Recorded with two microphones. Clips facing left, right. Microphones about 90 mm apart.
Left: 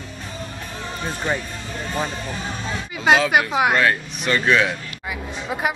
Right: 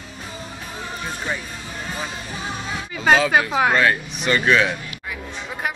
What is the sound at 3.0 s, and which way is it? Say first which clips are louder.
A woman's voice: even; centre (ahead or behind).